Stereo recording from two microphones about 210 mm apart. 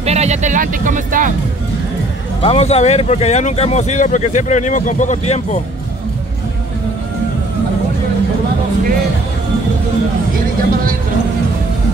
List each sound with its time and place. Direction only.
0.0 s speech: 30° right (ahead or behind)
2.4 s speech: 30° left (ahead or behind)